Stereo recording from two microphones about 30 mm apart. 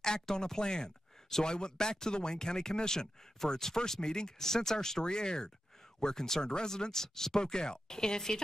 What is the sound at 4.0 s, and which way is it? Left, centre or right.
Speech, left.